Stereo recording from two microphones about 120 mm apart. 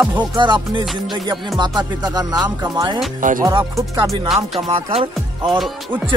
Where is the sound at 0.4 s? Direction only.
40° right (ahead or behind).